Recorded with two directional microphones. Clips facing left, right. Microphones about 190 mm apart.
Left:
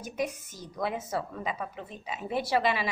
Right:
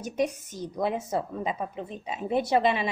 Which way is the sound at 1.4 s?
30° right (ahead or behind).